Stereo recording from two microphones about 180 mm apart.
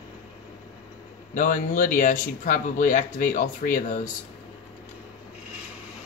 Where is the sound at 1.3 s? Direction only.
45° left (ahead or behind).